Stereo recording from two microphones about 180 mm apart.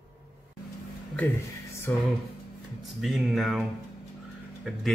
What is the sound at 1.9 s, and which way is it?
Speech, 10° left (ahead or behind).